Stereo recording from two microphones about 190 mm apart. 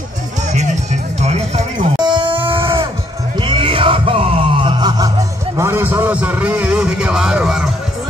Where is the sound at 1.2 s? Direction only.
35° right (ahead or behind).